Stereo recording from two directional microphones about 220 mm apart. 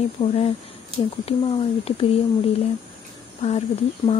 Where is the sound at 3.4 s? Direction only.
30° left (ahead or behind).